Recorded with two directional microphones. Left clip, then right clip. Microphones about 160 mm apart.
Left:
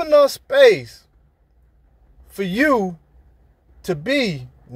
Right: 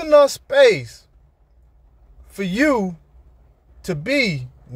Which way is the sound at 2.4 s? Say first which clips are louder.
Left 1 dB; 20° right (ahead or behind).